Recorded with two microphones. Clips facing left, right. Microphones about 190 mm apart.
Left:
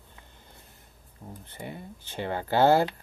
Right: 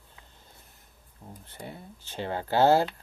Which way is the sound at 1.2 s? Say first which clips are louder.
Left 2 dB; centre (ahead or behind).